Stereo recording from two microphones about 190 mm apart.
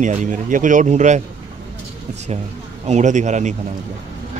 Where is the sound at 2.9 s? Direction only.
40° right (ahead or behind).